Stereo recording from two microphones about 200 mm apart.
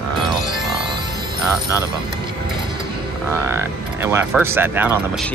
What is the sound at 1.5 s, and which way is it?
Speech, 15° left (ahead or behind).